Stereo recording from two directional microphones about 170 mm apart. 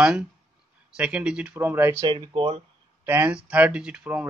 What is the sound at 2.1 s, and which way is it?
Speech, 30° right (ahead or behind).